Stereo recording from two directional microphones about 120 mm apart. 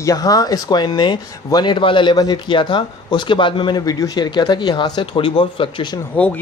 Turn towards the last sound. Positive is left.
turn(degrees=10)  # may be behind; listen again after turning